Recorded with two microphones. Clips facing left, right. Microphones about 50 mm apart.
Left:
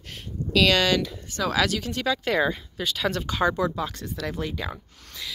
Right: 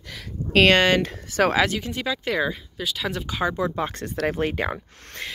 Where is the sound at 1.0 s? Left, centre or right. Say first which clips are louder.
Right 7 dB; right.